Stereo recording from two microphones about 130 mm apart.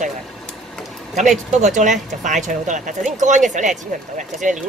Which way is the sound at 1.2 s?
70° right (ahead or behind).